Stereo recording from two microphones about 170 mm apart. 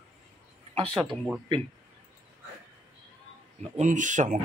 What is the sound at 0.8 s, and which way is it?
Speech, centre (ahead or behind).